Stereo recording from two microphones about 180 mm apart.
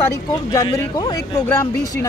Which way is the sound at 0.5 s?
20° left (ahead or behind).